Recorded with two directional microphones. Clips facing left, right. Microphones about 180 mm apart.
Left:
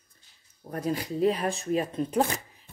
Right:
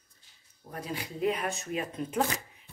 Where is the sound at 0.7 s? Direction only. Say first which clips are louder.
Left 8 dB; 40° left (ahead or behind).